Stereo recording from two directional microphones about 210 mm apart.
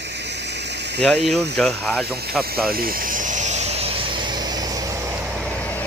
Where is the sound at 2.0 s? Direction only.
50° right (ahead or behind).